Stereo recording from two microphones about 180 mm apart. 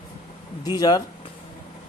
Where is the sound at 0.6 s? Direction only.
20° left (ahead or behind).